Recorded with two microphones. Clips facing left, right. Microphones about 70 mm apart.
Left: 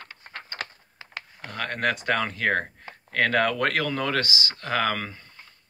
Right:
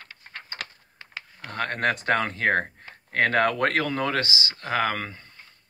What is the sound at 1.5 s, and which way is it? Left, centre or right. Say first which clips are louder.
Speech: right 1 dB; right.